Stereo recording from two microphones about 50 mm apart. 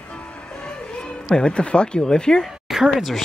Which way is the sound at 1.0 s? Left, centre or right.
Centre.